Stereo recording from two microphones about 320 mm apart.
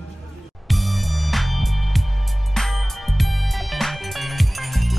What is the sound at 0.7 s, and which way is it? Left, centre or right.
Music, centre.